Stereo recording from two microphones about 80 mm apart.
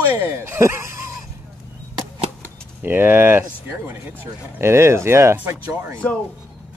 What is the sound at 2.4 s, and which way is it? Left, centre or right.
Keys jangling, right.